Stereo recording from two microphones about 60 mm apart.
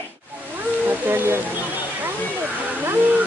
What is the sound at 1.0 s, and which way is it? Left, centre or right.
Music, right.